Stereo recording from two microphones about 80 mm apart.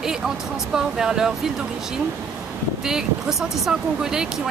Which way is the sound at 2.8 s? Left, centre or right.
Centre.